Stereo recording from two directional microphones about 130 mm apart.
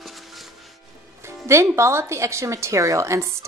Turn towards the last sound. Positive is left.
turn(degrees=-20)  # may be behind; listen again after turning